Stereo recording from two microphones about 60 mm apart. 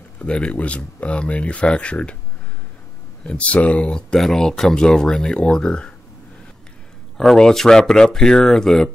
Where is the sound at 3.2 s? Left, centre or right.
Left.